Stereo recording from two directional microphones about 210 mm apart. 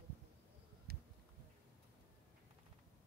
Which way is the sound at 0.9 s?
50° right (ahead or behind).